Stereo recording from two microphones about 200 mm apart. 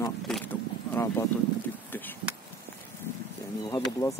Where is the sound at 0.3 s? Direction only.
10° left (ahead or behind).